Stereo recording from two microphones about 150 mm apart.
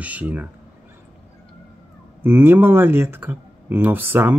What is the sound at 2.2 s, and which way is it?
Speech, 15° right (ahead or behind).